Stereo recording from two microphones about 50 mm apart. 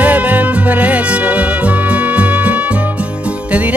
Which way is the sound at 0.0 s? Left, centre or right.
Right.